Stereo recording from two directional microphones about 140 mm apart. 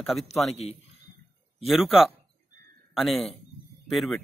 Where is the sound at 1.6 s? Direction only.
Centre (ahead or behind).